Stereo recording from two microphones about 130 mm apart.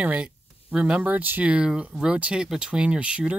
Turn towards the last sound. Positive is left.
turn(degrees=-10)  # may be behind; listen again after turning